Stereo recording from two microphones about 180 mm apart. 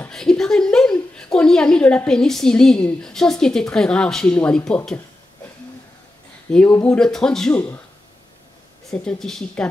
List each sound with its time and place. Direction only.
0.0 s a woman's voice: 5° left (ahead or behind)
6.5 s speech: 5° left (ahead or behind)
8.9 s speech: 5° left (ahead or behind)